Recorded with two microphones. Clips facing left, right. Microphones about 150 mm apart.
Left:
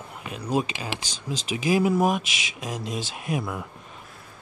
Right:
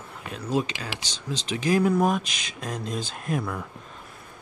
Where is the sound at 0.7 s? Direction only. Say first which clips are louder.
Left 3 dB; 25° left (ahead or behind).